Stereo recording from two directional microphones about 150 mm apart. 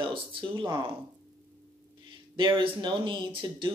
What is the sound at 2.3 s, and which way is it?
Speech, 30° right (ahead or behind).